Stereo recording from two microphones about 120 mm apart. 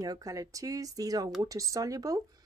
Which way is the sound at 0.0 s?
30° right (ahead or behind).